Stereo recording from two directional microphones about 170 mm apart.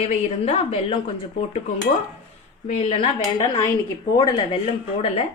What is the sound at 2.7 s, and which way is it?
Speech, 35° left (ahead or behind).